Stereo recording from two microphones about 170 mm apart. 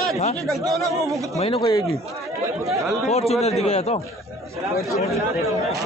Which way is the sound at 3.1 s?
40° left (ahead or behind).